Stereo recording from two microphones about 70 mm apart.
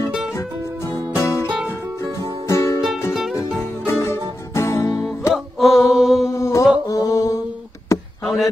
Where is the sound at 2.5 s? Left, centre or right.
Left.